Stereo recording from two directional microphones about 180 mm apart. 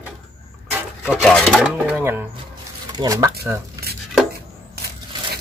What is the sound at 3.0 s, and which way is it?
Speech, 20° right (ahead or behind).